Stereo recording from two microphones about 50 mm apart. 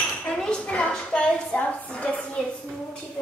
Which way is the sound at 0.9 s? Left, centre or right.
Left.